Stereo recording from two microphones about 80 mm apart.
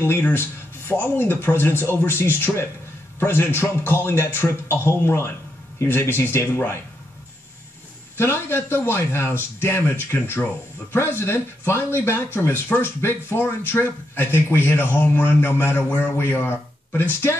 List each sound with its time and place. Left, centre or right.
0.0 s speech: left
8.2 s speech: left